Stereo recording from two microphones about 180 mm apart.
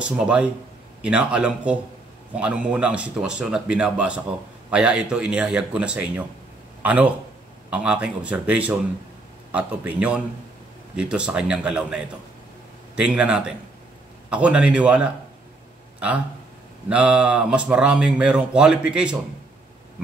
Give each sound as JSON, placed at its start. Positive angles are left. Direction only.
{"t": 0.0, "sound": "a man's voice", "side_deg": -5}
{"t": 16.9, "sound": "speech", "side_deg": -5}